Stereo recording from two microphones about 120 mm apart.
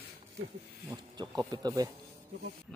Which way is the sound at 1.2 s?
40° right (ahead or behind).